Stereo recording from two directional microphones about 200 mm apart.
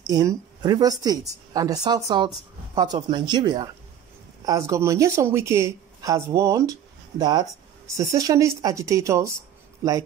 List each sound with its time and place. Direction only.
0.0 s a woman's voice: 15° right (ahead or behind)